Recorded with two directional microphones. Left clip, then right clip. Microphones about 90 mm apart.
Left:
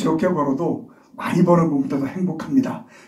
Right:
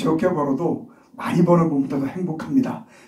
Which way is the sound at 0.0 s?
40° left (ahead or behind).